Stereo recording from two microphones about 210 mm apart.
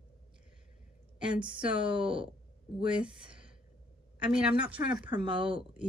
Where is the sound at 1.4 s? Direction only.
25° right (ahead or behind).